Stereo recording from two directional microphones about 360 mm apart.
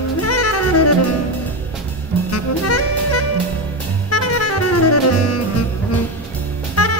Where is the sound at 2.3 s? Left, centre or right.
Left.